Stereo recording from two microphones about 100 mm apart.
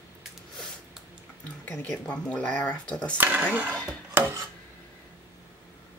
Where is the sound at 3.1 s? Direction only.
15° right (ahead or behind).